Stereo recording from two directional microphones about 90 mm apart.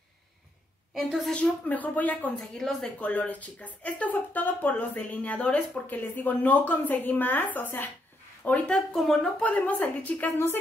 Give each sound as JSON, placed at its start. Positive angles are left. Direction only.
{"t": 0.9, "sound": "a woman's voice", "side_deg": 0}
{"t": 1.4, "sound": "speech", "side_deg": 15}
{"t": 3.0, "sound": "speech", "side_deg": 15}
{"t": 9.4, "sound": "speech", "side_deg": 15}